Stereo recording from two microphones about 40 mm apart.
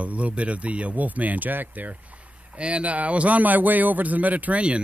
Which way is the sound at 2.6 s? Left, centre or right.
Right.